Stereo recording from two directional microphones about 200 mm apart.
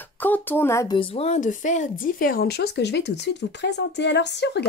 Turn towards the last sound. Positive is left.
turn(degrees=60)  # may be behind; listen again after turning